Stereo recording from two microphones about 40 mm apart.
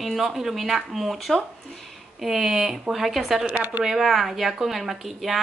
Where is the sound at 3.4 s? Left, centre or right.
Right.